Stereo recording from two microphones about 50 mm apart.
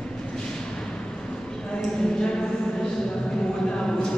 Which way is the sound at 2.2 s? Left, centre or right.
Centre.